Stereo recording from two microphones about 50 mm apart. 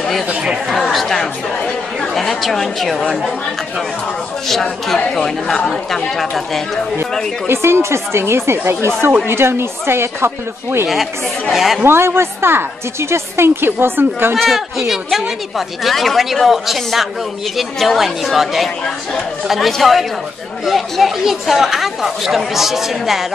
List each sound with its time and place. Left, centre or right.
0.4 s speech: centre
4.5 s speech: centre
7.4 s speech: right
10.9 s speech: centre
11.8 s a woman's voice: right
14.3 s speech: centre